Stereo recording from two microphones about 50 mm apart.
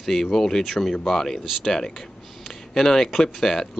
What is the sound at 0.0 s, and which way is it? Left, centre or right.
Speech, centre.